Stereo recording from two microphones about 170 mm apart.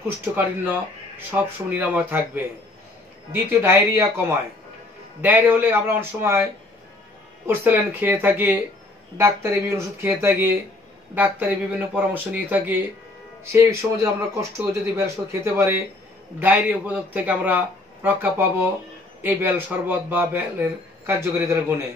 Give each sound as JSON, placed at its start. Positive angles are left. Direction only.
{"t": 0.2, "sound": "a man's voice", "side_deg": -10}
{"t": 7.4, "sound": "a man's voice", "side_deg": -10}
{"t": 19.2, "sound": "a man's voice", "side_deg": -10}